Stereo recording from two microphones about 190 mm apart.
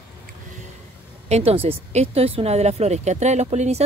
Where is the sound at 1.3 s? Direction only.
35° right (ahead or behind).